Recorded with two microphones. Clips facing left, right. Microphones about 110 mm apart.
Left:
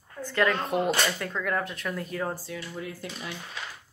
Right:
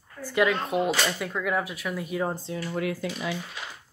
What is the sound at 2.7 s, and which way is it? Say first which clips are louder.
Speech: right 8 dB; 80° right.